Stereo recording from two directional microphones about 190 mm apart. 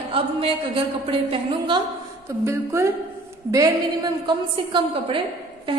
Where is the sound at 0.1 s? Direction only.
30° right (ahead or behind).